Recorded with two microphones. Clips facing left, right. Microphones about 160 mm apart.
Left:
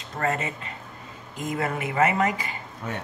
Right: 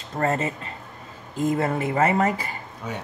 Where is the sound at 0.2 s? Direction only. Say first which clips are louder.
Right 3 dB; 40° right (ahead or behind).